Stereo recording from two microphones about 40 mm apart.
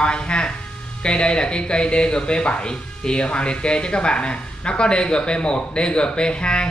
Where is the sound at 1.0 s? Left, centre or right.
Left.